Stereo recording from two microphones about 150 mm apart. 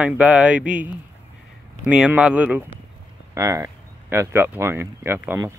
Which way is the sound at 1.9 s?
10° right (ahead or behind).